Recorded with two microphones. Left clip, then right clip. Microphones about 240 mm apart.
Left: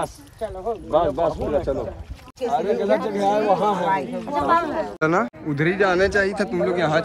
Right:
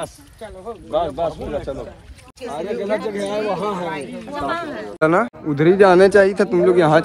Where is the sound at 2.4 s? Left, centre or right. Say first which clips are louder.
Left 5 dB; left.